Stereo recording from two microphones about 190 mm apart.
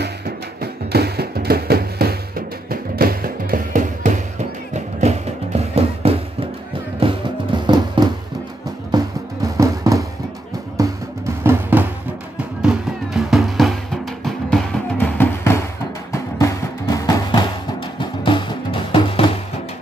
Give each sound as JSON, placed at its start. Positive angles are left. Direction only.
{"t": 0.6, "sound": "music", "side_deg": -55}